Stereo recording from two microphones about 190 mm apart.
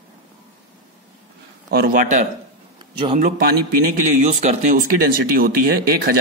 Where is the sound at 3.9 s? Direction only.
40° right (ahead or behind).